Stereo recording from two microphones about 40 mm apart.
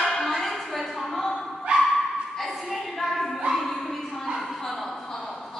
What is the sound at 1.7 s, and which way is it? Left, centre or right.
Dog, right.